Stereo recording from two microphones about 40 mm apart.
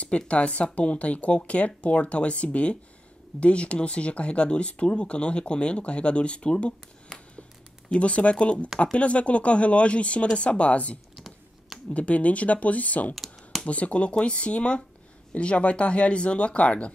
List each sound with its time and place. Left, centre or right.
0.3 s speech: left
7.1 s a sound: centre
7.9 s speech: left
13.1 s computer keyboard: centre
13.7 s speech: left